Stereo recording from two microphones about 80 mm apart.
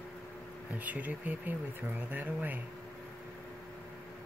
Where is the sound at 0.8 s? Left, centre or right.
Right.